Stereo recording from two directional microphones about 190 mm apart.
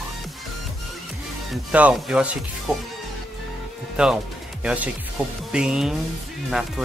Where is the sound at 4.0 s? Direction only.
5° right (ahead or behind).